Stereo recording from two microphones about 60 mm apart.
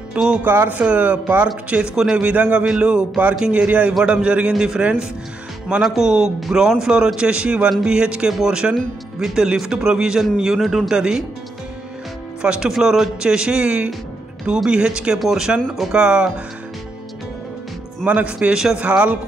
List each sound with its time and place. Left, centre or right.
0.1 s speech: centre
0.4 s speech: right
2.0 s a man's voice: centre
2.2 s a man's voice: right
3.6 s a man's voice: right
12.4 s a man's voice: centre
18.0 s speech: right